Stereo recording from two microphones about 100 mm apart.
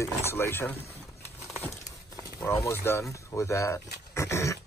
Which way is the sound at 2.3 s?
25° left (ahead or behind).